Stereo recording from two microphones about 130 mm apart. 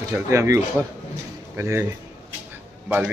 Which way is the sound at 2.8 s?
15° right (ahead or behind).